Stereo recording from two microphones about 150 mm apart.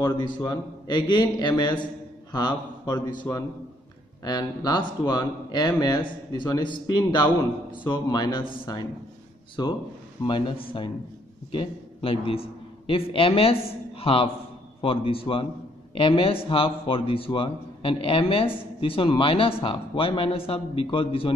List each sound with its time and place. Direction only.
0.0 s a man's voice: 30° left (ahead or behind)
9.6 s a man's voice: 30° left (ahead or behind)